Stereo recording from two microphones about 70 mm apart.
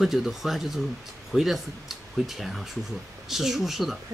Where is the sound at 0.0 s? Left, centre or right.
Centre.